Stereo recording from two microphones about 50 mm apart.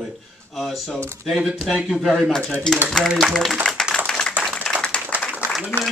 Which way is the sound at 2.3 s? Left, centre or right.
Centre.